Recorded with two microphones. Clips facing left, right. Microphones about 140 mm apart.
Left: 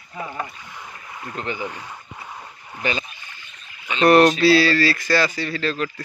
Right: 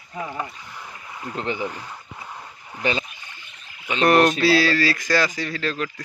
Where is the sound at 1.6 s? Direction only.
10° left (ahead or behind).